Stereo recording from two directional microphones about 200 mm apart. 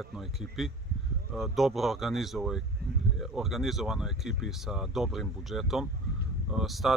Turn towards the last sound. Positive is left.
turn(degrees=0)  # may be behind; listen again after turning